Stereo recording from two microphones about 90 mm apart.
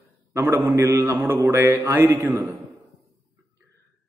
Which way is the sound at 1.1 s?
30° right (ahead or behind).